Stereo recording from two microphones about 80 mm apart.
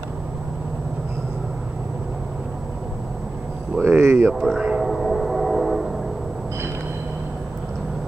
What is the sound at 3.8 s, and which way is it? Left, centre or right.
Speech, right.